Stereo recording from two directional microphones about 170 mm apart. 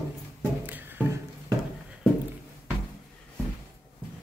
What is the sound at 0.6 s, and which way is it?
Music, 10° right (ahead or behind).